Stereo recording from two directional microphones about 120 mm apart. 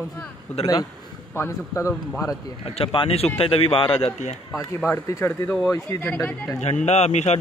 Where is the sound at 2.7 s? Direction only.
55° left (ahead or behind).